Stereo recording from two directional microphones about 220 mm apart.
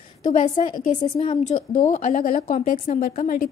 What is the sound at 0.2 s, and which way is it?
A woman's voice, 35° left (ahead or behind).